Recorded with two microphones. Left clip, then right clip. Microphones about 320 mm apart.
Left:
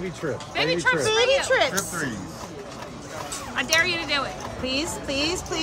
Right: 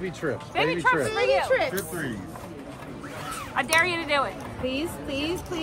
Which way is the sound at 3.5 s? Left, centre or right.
Centre.